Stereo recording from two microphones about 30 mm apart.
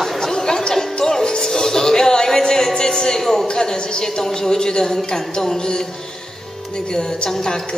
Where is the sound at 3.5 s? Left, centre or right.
Left.